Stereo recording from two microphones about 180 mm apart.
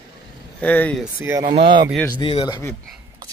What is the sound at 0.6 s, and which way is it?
Speech, 10° left (ahead or behind).